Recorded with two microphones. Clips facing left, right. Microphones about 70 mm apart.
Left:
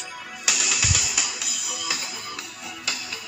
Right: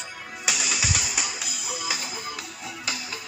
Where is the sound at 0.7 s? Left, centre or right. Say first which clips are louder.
Even; right.